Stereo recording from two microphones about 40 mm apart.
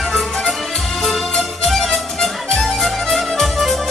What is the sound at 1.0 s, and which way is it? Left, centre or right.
Music, centre.